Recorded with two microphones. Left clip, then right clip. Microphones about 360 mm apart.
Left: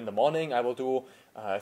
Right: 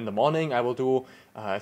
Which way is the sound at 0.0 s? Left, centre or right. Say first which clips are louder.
Right 2 dB; right.